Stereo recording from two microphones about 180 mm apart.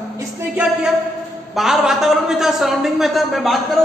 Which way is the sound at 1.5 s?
Centre (ahead or behind).